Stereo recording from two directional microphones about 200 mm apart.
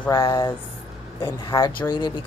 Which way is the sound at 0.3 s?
15° left (ahead or behind).